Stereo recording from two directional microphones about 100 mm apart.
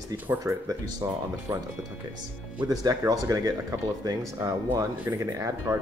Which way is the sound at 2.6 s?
35° right (ahead or behind).